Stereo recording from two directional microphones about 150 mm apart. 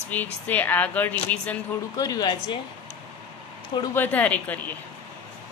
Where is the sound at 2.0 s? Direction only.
25° left (ahead or behind).